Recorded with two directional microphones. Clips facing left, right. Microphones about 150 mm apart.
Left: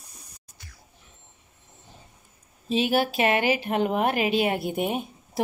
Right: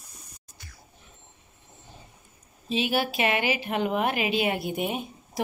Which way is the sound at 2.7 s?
45° left (ahead or behind).